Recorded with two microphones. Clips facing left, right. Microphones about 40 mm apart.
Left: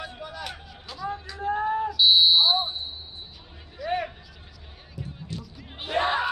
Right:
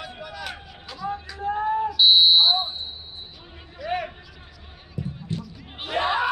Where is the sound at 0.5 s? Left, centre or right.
Centre.